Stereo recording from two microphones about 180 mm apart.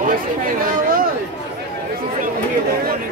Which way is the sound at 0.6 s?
50° right (ahead or behind).